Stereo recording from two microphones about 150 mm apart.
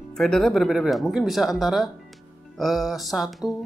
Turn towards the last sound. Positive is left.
turn(degrees=0)  # may be behind; listen again after turning